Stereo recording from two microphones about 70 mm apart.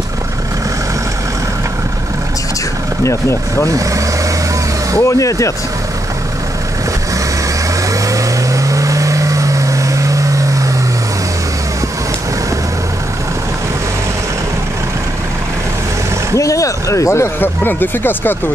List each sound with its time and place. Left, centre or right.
3.0 s speech: left
3.7 s speech: right
5.0 s speech: left
7.9 s vehicle: right
16.3 s speech: left
17.4 s speech: left